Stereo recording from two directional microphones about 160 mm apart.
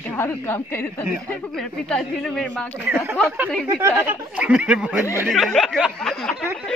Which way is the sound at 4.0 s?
10° right (ahead or behind).